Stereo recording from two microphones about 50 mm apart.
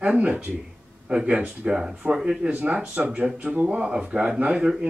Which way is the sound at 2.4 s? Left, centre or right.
Right.